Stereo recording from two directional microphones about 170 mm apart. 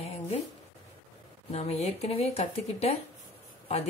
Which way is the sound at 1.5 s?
40° left (ahead or behind).